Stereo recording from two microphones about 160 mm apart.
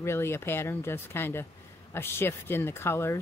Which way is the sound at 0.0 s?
15° left (ahead or behind).